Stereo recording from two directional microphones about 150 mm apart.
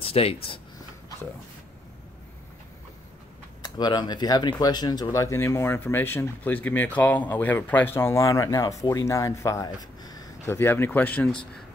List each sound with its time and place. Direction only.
0.0 s speech: 40° left (ahead or behind)
3.6 s speech: 25° left (ahead or behind); by 11.3 s 10° left (ahead or behind)